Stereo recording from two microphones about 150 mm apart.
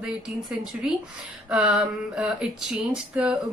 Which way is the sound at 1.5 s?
5° right (ahead or behind).